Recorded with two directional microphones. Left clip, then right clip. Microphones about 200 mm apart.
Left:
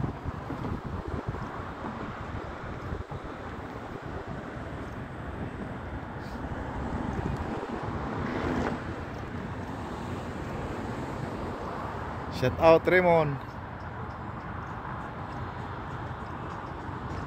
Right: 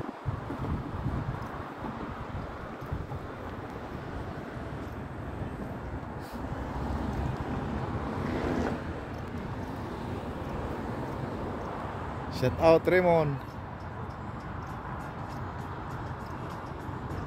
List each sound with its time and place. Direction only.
8.3 s boat: 20° right (ahead or behind)
12.4 s speech: 5° right (ahead or behind)